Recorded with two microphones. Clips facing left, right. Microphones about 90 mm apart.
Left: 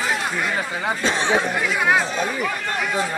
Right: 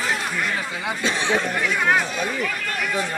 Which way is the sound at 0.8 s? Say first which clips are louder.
Left 3 dB; 35° left (ahead or behind).